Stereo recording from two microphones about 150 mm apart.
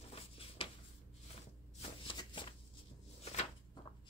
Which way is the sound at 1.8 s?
35° left (ahead or behind).